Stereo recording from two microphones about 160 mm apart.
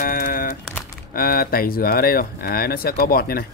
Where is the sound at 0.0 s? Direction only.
65° left (ahead or behind).